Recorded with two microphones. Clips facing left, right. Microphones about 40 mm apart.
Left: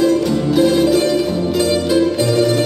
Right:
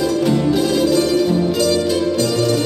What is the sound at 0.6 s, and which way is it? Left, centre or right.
Music, left.